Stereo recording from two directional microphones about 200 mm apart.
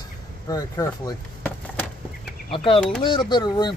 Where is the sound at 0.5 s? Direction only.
20° left (ahead or behind).